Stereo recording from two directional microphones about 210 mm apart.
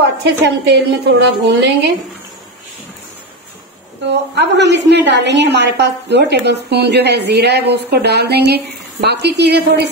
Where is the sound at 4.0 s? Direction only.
55° right (ahead or behind).